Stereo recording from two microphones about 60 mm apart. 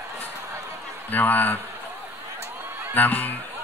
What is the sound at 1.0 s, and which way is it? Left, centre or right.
Speech, left.